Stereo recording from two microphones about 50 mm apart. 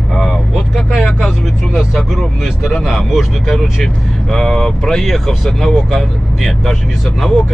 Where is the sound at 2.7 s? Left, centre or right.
Centre.